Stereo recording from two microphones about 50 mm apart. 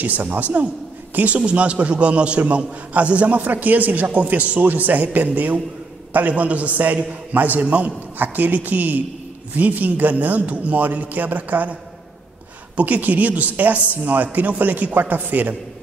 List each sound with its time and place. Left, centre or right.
0.0 s a man's voice: right
12.7 s a man's voice: right